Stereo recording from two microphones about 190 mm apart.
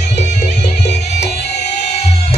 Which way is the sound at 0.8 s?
60° left (ahead or behind).